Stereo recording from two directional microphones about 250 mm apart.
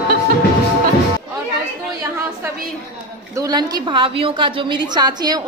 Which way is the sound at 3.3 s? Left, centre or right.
Centre.